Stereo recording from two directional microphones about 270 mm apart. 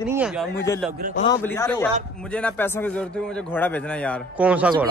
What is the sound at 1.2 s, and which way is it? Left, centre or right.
A man's voice, centre.